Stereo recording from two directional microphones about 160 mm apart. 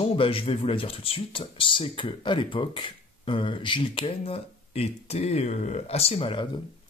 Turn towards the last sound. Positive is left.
turn(degrees=30)  # may be behind; listen again after turning